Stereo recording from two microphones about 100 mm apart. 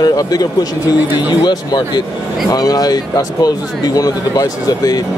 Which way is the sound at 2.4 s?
40° left (ahead or behind).